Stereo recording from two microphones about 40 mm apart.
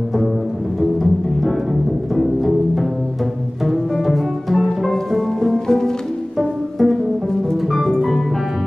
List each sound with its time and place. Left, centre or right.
1.4 s music: centre
6.3 s pizzicato: centre
7.7 s music: centre